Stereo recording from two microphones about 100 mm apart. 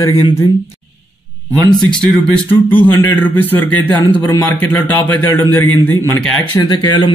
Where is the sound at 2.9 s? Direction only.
30° left (ahead or behind).